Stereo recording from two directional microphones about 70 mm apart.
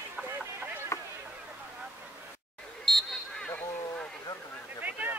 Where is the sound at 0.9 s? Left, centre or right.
Left.